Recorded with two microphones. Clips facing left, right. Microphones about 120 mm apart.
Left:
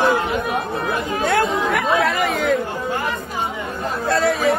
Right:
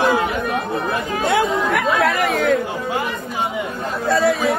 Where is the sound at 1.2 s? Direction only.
Centre (ahead or behind).